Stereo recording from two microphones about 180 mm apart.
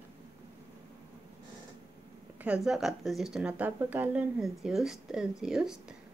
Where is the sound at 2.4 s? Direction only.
5° right (ahead or behind).